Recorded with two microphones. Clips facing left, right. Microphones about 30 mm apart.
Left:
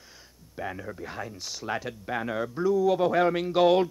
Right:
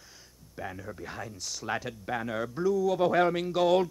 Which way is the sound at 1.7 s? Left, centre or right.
Centre.